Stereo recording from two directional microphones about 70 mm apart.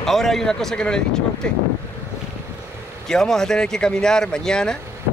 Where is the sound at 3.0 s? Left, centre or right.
Centre.